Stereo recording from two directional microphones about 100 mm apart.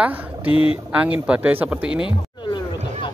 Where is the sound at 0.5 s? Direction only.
65° left (ahead or behind).